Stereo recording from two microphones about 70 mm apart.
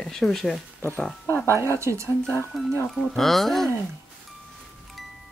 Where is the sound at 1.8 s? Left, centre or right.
Right.